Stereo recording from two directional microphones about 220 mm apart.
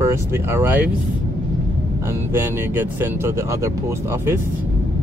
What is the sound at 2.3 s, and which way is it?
Speech, 10° right (ahead or behind).